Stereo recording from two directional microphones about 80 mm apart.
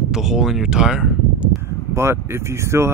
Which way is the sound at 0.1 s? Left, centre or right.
Centre.